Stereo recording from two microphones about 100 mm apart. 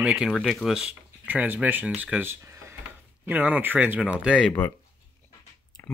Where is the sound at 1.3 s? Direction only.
15° right (ahead or behind).